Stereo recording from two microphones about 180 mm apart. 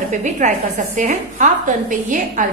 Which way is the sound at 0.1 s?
45° right (ahead or behind).